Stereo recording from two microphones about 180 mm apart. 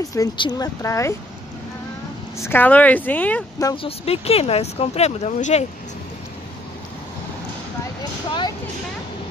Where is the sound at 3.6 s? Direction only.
20° left (ahead or behind).